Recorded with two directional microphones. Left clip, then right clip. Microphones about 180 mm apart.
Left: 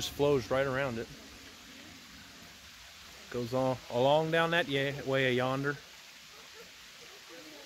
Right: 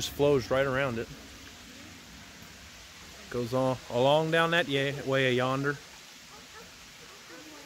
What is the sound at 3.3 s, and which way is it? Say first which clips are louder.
Speech: right 3 dB; 5° right (ahead or behind).